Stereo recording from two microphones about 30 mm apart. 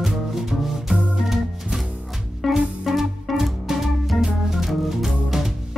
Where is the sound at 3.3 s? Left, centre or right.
Centre.